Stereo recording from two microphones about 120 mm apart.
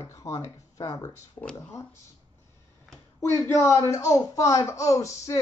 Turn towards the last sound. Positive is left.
turn(degrees=25)  # may be behind; listen again after turning